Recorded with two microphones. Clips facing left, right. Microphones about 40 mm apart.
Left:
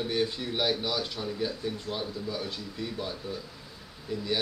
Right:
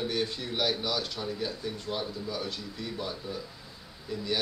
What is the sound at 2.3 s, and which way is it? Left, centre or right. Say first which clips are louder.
Speech: even; centre.